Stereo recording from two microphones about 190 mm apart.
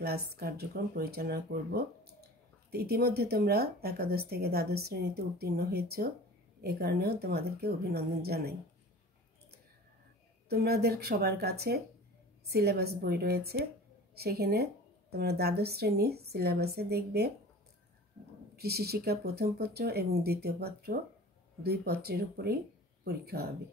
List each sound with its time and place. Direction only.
0.0 s a woman's voice: 55° right (ahead or behind)
10.5 s a woman's voice: 55° right (ahead or behind)
18.6 s a woman's voice: 55° right (ahead or behind)